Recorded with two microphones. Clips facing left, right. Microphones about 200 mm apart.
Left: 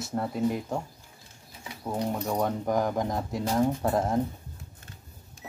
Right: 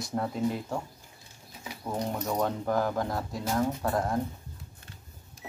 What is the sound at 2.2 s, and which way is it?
Speech, 10° left (ahead or behind).